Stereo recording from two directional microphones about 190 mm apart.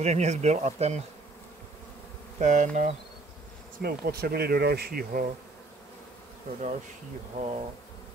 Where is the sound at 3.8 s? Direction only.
55° right (ahead or behind).